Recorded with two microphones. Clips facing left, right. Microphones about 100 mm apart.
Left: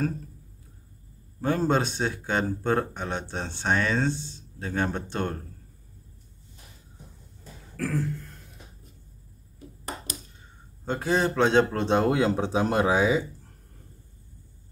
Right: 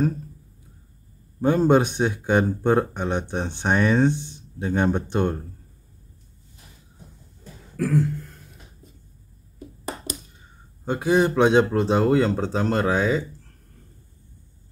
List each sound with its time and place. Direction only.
1.4 s speech: 15° right (ahead or behind)
7.7 s beatboxing: 15° right (ahead or behind)
10.9 s a man's voice: 15° right (ahead or behind); by 13.5 s 5° left (ahead or behind)